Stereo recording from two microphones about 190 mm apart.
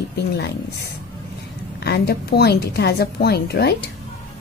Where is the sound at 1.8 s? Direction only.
60° left (ahead or behind).